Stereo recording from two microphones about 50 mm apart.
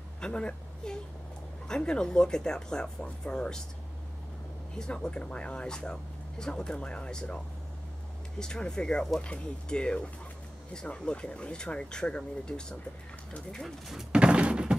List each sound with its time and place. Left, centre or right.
0.2 s a woman's voice: centre
4.7 s speech: centre
8.4 s speech: centre
14.1 s music: right